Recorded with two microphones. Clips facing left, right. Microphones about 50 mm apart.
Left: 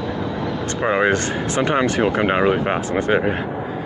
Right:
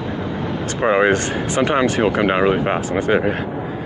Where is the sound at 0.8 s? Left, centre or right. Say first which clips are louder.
Right 3 dB; centre.